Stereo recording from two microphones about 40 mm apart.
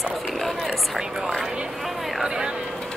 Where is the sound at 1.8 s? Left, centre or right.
Centre.